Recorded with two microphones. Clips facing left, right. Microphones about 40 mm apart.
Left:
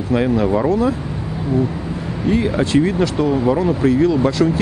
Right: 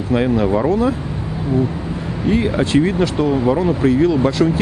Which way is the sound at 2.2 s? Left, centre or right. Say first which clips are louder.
Even; centre.